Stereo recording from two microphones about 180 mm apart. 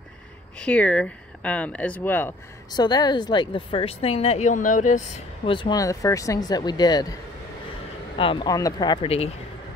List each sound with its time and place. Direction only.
0.6 s speech: 5° left (ahead or behind)
2.7 s speech: 20° left (ahead or behind); by 5.5 s 40° left (ahead or behind)
5.5 s speech: 25° left (ahead or behind)
8.2 s speech: 25° left (ahead or behind)